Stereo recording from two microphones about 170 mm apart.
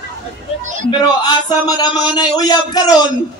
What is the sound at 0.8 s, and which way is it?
Speech, 25° left (ahead or behind).